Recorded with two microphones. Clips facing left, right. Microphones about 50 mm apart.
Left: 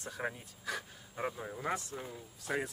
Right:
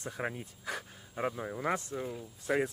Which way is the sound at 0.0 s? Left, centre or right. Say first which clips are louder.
Right 2 dB; right.